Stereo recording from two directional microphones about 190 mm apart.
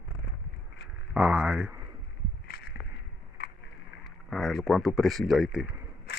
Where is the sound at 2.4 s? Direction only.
60° left (ahead or behind).